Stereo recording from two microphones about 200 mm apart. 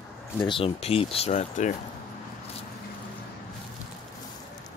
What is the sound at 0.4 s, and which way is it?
Speech, 25° left (ahead or behind).